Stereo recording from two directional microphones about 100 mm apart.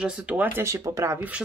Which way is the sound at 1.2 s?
10° right (ahead or behind).